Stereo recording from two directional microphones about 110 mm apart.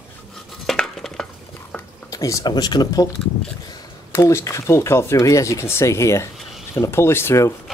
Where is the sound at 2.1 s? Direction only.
30° left (ahead or behind).